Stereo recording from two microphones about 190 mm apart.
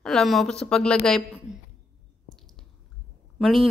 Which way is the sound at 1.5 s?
90° right.